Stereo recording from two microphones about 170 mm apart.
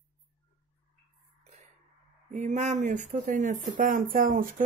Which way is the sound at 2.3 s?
45° right (ahead or behind).